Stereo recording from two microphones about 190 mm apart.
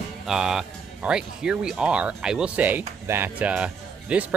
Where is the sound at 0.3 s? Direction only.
5° right (ahead or behind).